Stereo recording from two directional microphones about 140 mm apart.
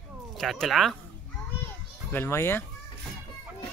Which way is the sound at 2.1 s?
15° left (ahead or behind).